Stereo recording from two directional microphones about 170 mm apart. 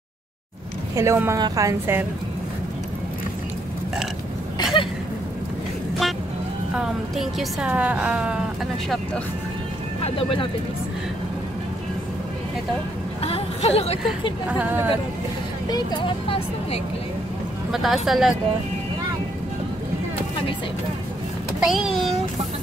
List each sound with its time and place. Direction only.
0.9 s a woman's voice: 15° right (ahead or behind)
6.7 s a woman's voice: 5° right (ahead or behind)
10.0 s speech: 30° left (ahead or behind)
13.2 s speech: 35° left (ahead or behind)
14.5 s a woman's voice: 10° right (ahead or behind)
15.7 s speech: 25° left (ahead or behind)
17.6 s speech: centre (ahead or behind)
21.5 s speech: centre (ahead or behind)